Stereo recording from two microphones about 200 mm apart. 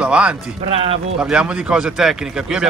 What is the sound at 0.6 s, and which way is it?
Speech, 30° right (ahead or behind).